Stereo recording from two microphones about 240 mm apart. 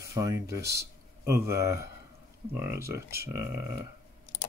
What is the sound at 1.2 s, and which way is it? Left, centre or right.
Speech, centre.